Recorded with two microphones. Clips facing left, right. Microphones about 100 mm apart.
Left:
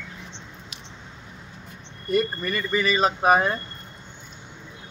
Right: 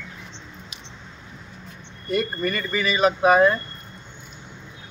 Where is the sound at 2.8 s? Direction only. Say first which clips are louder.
Right 2 dB; 35° left (ahead or behind).